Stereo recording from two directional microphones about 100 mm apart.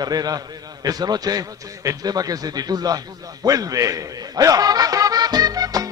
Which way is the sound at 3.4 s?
35° right (ahead or behind).